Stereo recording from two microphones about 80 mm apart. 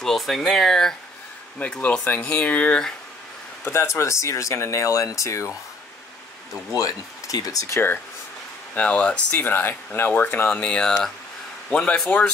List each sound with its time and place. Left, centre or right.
0.0 s speech: centre
1.6 s speech: centre
3.6 s speech: left
7.2 s speech: left
8.7 s speech: centre
9.4 s speech: left
10.5 s speech: centre